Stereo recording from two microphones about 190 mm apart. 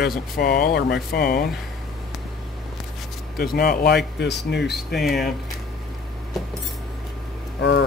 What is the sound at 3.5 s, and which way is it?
Speech, 50° left (ahead or behind).